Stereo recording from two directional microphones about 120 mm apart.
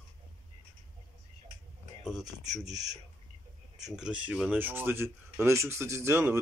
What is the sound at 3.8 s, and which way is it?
Speech, 10° right (ahead or behind).